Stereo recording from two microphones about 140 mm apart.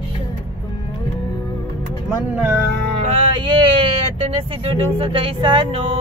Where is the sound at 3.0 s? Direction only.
35° right (ahead or behind).